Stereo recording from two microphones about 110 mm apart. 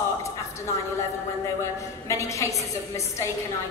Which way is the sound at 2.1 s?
25° left (ahead or behind).